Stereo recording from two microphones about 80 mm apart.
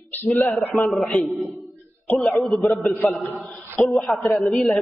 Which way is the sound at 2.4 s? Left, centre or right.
Centre.